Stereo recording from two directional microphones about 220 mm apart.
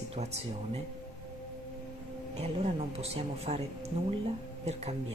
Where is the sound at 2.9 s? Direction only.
30° right (ahead or behind).